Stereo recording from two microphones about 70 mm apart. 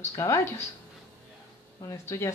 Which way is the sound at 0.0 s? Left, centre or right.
Left.